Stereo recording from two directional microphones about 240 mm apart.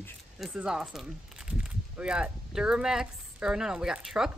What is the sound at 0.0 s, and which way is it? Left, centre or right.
Speech, centre.